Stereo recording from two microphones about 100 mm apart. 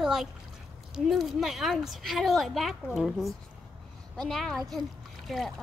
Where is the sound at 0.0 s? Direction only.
5° right (ahead or behind).